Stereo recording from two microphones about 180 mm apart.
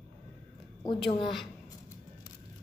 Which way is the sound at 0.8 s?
30° left (ahead or behind).